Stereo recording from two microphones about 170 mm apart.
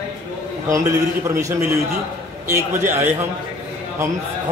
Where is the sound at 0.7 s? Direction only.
20° right (ahead or behind).